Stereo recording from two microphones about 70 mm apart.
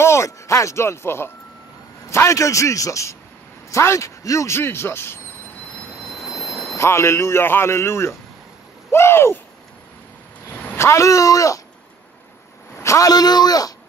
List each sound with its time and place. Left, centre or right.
0.0 s a man's voice: left
6.2 s jet engine: centre
6.8 s speech: left
10.8 s a man's voice: left
12.7 s a sound: left
13.1 s speech: left